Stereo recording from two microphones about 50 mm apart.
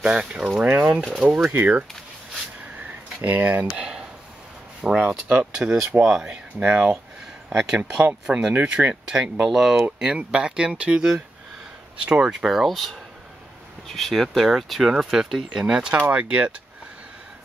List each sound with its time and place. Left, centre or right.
0.0 s speech: centre
0.7 s speech: right
3.2 s speech: right
3.6 s speech: centre
5.4 s speech: centre
8.0 s speech: right
8.6 s speech: centre
12.4 s speech: centre
13.9 s speech: centre
15.6 s speech: centre